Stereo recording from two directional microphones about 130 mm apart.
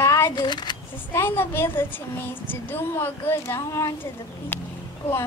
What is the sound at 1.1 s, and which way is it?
Speech, 20° left (ahead or behind).